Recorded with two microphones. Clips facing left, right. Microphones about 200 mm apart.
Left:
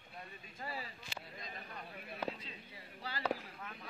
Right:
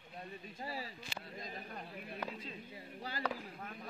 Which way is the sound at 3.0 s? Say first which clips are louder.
Right 1 dB; 45° right (ahead or behind).